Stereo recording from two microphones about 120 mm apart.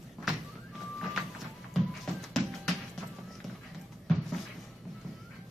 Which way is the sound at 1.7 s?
Centre (ahead or behind).